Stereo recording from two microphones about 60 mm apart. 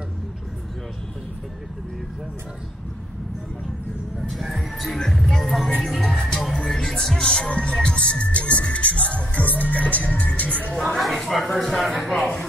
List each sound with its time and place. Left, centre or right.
4.2 s speech: centre
5.9 s music: centre
6.6 s speech: centre
11.0 s speech: centre